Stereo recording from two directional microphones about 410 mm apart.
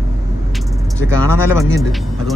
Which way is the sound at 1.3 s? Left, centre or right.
Centre.